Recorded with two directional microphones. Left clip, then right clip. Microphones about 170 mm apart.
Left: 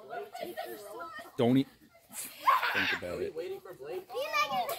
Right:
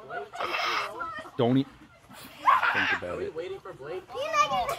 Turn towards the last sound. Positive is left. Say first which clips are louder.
# right 6 dB
turn(degrees=75)  # may be behind; listen again after turning